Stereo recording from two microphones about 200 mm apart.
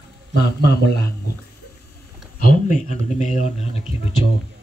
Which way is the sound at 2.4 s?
40° left (ahead or behind).